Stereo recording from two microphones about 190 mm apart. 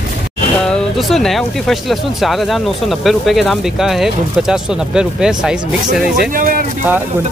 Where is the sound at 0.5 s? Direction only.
5° left (ahead or behind).